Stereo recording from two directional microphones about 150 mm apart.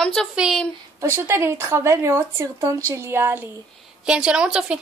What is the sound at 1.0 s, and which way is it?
A woman's voice, 15° right (ahead or behind).